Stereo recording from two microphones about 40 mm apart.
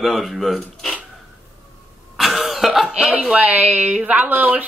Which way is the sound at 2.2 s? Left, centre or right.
Centre.